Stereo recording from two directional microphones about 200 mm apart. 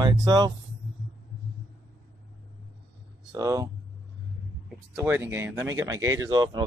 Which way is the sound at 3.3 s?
20° right (ahead or behind).